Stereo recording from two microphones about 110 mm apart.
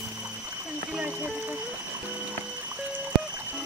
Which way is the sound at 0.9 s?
10° right (ahead or behind).